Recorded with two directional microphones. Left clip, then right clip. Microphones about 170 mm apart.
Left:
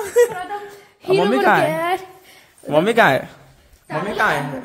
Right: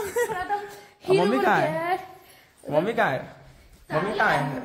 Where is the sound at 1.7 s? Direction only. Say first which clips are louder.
Left 6 dB; 65° left (ahead or behind).